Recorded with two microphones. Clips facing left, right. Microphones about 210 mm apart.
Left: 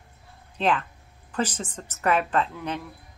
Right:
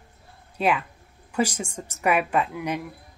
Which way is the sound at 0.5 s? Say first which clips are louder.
Right 1 dB; 10° right (ahead or behind).